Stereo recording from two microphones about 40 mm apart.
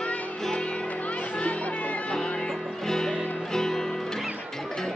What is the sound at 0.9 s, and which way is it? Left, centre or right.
Music, left.